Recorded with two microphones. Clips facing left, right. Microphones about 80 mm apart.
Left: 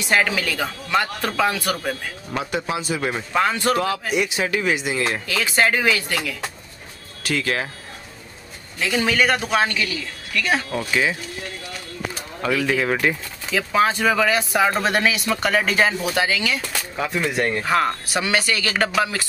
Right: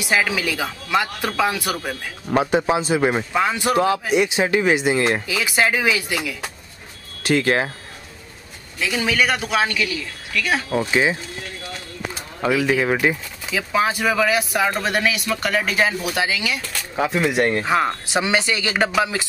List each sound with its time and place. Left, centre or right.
0.0 s a man's voice: centre
2.3 s a man's voice: right
3.3 s a man's voice: centre; by 5.2 s right
5.3 s a man's voice: centre
7.2 s speech: right
8.7 s speech: centre
10.8 s a man's voice: right
12.4 s a man's voice: centre